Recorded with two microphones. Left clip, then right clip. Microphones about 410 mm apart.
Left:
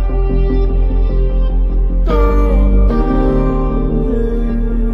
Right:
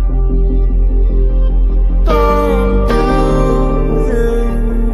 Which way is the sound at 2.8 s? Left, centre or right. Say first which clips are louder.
Right 1 dB; right.